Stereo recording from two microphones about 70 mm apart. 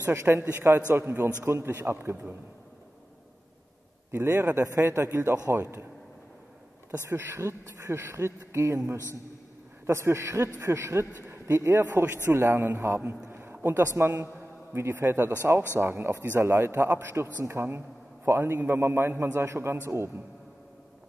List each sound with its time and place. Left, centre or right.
0.0 s a man's voice: right
4.1 s a man's voice: right
7.1 s a man's voice: right
11.9 s a man's voice: right
13.3 s a sound: right
13.7 s a man's voice: right